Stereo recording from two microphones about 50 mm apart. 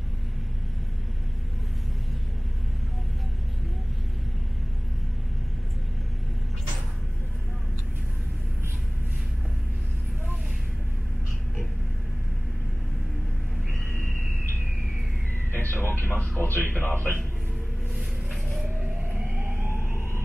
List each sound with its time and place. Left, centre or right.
15.5 s vehicle: left
16.3 s speech: left
19.7 s a sound: right